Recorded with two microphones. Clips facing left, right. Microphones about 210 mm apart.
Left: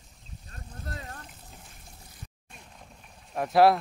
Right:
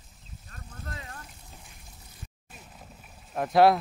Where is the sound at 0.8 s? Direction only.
40° left (ahead or behind).